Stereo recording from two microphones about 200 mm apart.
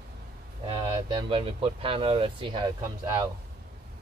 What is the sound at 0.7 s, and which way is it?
Speech, 25° right (ahead or behind).